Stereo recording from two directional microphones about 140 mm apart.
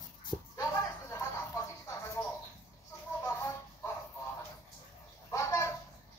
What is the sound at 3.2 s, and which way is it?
Music, 20° left (ahead or behind).